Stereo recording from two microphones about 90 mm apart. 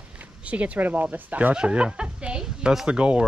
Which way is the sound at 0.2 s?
15° right (ahead or behind).